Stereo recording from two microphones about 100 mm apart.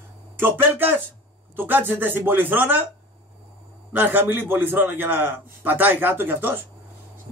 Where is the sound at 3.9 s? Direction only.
20° right (ahead or behind).